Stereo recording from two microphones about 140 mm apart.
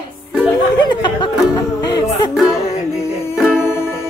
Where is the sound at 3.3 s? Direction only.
5° right (ahead or behind).